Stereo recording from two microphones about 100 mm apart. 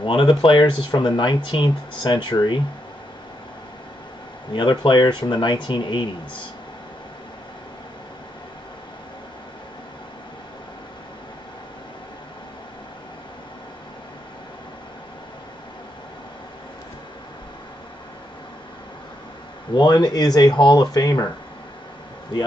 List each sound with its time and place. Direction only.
0.0 s speech: 55° left (ahead or behind)
4.5 s speech: 55° left (ahead or behind)
19.7 s speech: 45° left (ahead or behind)